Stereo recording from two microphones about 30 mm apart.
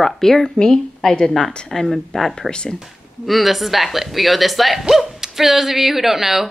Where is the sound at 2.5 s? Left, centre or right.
Left.